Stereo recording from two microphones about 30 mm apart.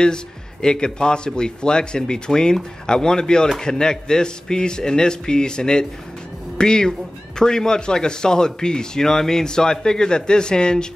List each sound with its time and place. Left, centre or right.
0.0 s speech: left